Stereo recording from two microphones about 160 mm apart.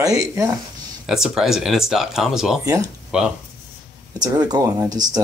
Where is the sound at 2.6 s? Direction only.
20° right (ahead or behind).